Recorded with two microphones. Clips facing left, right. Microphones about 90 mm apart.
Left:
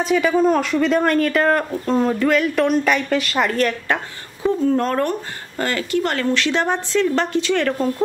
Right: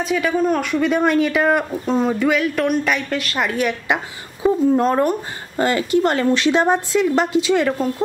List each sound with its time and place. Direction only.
0.0 s speech: centre (ahead or behind)